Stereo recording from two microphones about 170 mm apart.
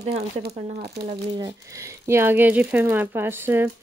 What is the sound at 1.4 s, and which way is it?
Speech, 20° right (ahead or behind).